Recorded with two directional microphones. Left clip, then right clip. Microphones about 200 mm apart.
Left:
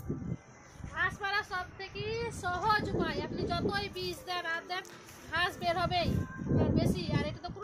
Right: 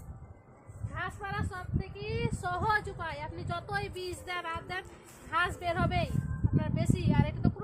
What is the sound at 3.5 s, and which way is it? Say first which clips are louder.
Speech: right 1 dB; 5° left (ahead or behind).